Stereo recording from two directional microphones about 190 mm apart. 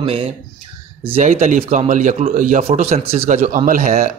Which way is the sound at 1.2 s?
40° right (ahead or behind).